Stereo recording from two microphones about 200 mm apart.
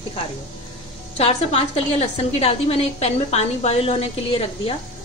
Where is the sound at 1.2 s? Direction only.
30° left (ahead or behind).